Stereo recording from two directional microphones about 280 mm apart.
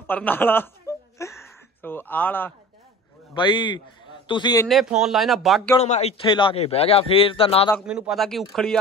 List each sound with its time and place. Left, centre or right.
0.0 s a sound: centre
3.3 s speech: centre
4.6 s speech: centre
5.8 s a man's voice: left
7.8 s speech: centre